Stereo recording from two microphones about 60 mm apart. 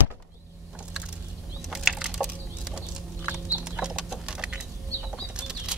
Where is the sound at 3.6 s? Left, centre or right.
Centre.